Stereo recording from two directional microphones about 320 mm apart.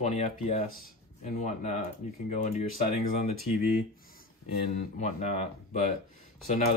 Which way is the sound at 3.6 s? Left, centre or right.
Left.